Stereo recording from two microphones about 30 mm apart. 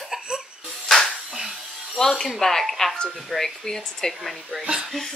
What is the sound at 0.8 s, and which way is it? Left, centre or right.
Music, centre.